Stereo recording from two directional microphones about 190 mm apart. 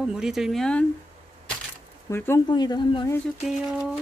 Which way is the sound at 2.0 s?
15° left (ahead or behind).